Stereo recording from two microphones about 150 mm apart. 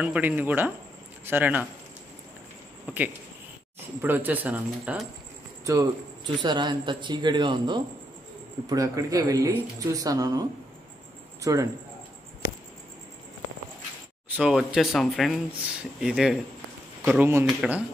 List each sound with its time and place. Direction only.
0.0 s speech: 10° right (ahead or behind)
2.9 s speech: 10° right (ahead or behind)
5.7 s a man's voice: 25° right (ahead or behind)
11.4 s a man's voice: 20° right (ahead or behind)
14.3 s speech: 5° right (ahead or behind)
17.0 s speech: 15° right (ahead or behind)